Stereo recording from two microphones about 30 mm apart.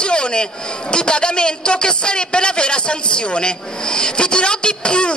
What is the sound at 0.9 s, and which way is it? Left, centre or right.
A man's voice, left.